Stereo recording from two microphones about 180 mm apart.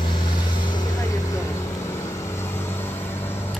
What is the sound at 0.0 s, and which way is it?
Vehicle, 25° left (ahead or behind).